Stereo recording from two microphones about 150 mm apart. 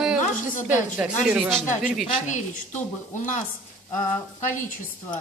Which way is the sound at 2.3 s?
55° left (ahead or behind).